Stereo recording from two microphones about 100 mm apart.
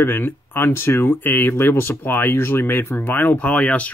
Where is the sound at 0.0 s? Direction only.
20° left (ahead or behind).